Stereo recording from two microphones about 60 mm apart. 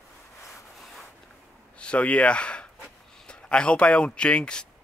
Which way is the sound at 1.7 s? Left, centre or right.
Left.